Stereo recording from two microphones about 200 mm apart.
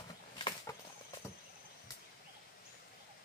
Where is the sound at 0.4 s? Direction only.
20° left (ahead or behind).